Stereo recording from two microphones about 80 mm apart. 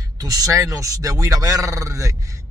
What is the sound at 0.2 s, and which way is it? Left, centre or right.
A man's voice, right.